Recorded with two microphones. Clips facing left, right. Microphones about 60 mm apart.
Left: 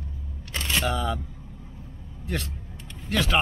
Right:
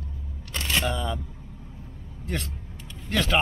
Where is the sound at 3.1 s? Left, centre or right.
Centre.